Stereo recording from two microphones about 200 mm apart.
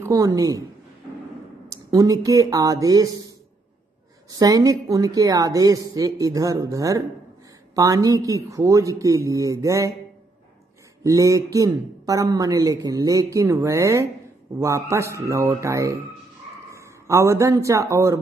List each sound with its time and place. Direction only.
0.0 s speech: 15° right (ahead or behind)
1.7 s speech: 15° right (ahead or behind)
4.3 s speech: 20° right (ahead or behind)
11.1 s speech: 15° right (ahead or behind)